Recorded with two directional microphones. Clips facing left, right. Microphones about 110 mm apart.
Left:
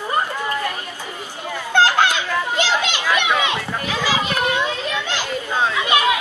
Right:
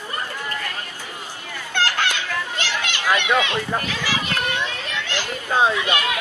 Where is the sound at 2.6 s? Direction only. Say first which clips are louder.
Left 6 dB; 15° left (ahead or behind).